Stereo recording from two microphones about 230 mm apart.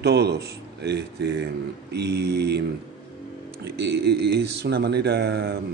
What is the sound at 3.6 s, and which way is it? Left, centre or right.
A man's voice, right.